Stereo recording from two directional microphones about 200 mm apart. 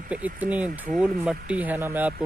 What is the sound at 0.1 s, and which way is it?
Speech, 5° right (ahead or behind).